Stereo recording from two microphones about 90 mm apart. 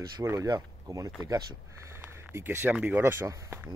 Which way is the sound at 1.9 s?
30° right (ahead or behind).